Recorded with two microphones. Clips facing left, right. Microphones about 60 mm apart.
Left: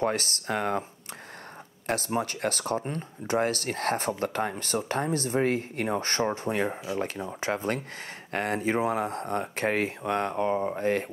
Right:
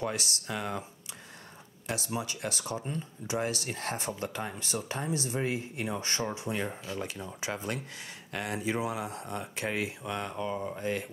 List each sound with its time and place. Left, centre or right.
0.0 s speech: left
1.9 s speech: left